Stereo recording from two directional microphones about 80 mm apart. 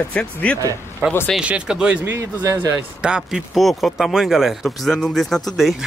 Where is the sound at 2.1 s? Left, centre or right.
Right.